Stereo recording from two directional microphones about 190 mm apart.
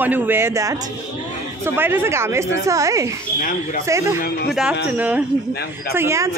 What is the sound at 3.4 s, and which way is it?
Speech, 45° left (ahead or behind).